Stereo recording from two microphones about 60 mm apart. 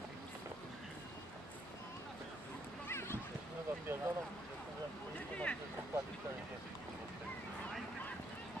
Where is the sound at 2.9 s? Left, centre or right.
Left.